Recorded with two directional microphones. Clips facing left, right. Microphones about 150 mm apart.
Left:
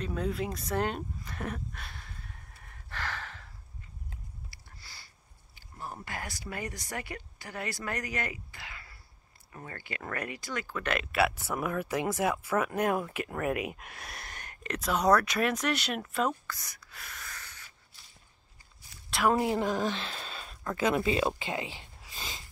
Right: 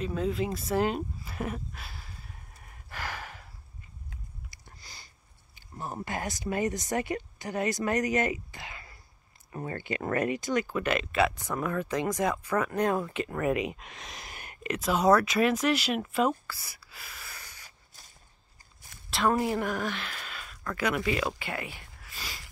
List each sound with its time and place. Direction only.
0.0 s speech: centre (ahead or behind)
2.9 s gasp: 10° right (ahead or behind)
4.5 s a sound: 20° right (ahead or behind)
6.0 s speech: 20° right (ahead or behind)
10.9 s speech: 5° left (ahead or behind)
17.6 s spray: 45° right (ahead or behind)
18.9 s a sound: 55° right (ahead or behind)
19.2 s speech: 15° left (ahead or behind)